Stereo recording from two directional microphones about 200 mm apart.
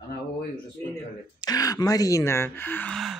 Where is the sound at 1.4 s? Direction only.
20° left (ahead or behind); by 3.2 s centre (ahead or behind).